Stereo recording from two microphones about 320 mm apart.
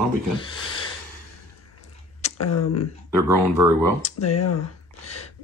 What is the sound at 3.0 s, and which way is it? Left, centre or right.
Speech, centre.